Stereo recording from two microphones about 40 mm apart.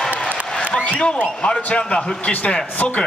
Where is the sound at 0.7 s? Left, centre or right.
Left.